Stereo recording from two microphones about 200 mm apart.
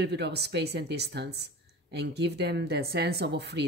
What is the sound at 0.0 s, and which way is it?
A woman's voice, 55° right (ahead or behind).